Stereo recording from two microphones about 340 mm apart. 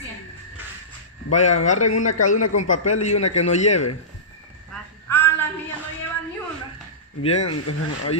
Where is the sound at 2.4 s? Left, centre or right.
Left.